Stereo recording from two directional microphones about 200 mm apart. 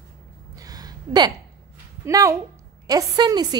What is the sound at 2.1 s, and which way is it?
A woman's voice, 15° right (ahead or behind).